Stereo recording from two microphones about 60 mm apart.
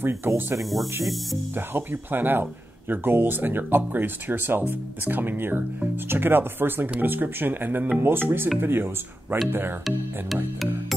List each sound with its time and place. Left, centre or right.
0.0 s speech: right
1.0 s music: centre
1.5 s speech: right
9.8 s music: centre